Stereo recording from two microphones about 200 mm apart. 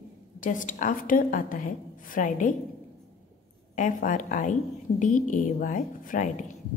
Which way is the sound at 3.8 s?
40° left (ahead or behind).